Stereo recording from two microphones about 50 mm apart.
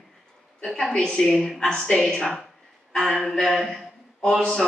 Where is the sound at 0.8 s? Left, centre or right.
Centre.